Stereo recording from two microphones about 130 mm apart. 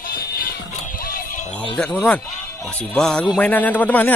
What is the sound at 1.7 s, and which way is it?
A man's voice, 10° left (ahead or behind).